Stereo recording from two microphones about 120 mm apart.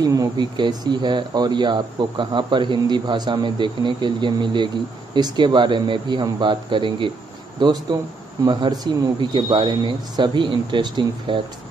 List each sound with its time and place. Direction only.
0.0 s speech: 30° right (ahead or behind)